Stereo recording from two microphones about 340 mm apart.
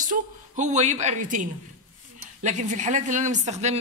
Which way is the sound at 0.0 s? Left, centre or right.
Right.